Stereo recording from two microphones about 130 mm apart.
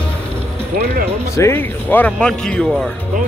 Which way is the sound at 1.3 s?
20° left (ahead or behind).